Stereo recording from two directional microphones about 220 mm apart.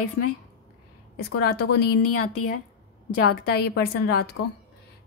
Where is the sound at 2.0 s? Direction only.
80° left.